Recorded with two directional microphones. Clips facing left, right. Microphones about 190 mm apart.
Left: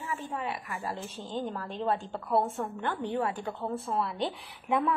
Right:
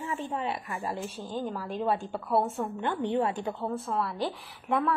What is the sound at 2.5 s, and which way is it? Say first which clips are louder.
A woman's voice: right 2 dB; 20° right (ahead or behind).